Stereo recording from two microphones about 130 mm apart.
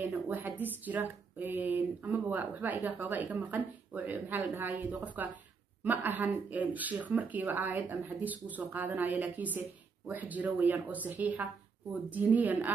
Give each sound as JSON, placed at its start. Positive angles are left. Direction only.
{"t": 0.1, "sound": "speech", "side_deg": -15}